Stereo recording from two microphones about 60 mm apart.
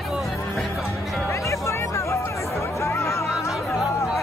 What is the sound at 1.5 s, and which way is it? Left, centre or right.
Music, left.